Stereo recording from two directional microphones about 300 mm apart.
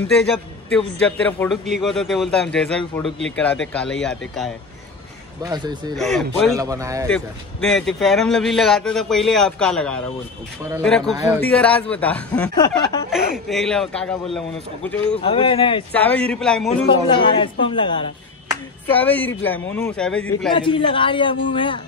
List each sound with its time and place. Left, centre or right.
0.1 s a man's voice: centre
5.4 s a man's voice: centre
5.9 s a man's voice: centre
6.5 s a man's voice: centre
7.1 s a man's voice: centre
15.1 s a woman's voice: centre
15.9 s a man's voice: centre
16.9 s a woman's voice: centre
18.9 s a man's voice: centre
20.5 s a woman's voice: centre